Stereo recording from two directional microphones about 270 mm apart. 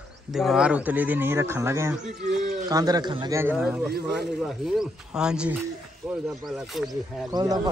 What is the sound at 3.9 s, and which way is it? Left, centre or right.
Speech, right.